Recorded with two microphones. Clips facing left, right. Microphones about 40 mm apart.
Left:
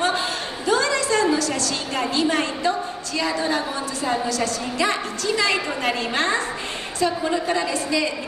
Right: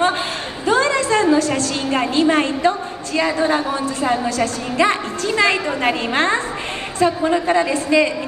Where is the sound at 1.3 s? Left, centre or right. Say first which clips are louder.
Right 6 dB; right.